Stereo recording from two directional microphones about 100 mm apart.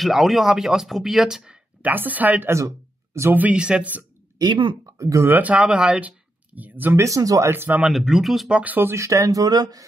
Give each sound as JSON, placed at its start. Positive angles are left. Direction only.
{"t": 0.0, "sound": "speech", "side_deg": 0}
{"t": 2.5, "sound": "speech", "side_deg": -30}
{"t": 3.3, "sound": "speech", "side_deg": -15}
{"t": 4.4, "sound": "speech", "side_deg": -50}
{"t": 4.8, "sound": "speech", "side_deg": -30}
{"t": 7.8, "sound": "speech", "side_deg": -5}
{"t": 8.5, "sound": "speech", "side_deg": -20}